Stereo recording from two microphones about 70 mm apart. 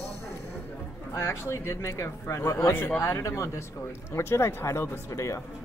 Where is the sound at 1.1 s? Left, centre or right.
Left.